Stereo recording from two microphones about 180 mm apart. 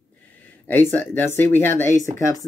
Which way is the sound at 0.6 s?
10° left (ahead or behind).